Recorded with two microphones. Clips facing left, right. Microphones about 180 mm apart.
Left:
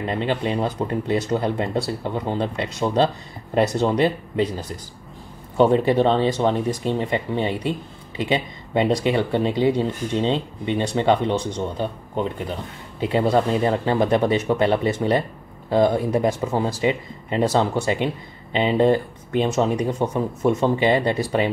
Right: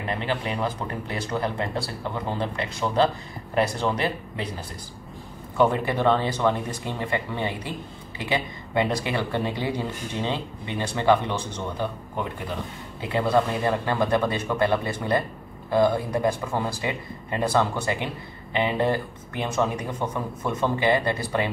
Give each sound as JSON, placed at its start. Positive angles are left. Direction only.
{"t": 0.3, "sound": "speech", "side_deg": 25}
{"t": 5.6, "sound": "speech", "side_deg": 20}
{"t": 9.0, "sound": "speech", "side_deg": 20}